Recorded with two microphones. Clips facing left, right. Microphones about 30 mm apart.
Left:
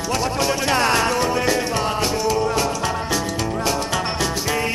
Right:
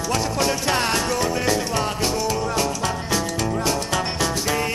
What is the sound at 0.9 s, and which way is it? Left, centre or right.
Music, left.